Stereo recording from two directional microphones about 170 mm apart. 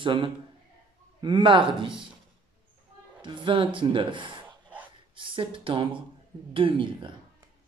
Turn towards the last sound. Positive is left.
turn(degrees=-30)  # may be behind; listen again after turning